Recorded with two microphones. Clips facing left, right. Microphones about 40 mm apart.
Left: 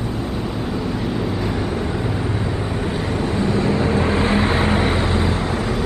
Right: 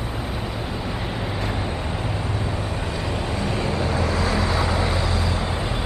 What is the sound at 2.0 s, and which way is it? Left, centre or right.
Vehicle, centre.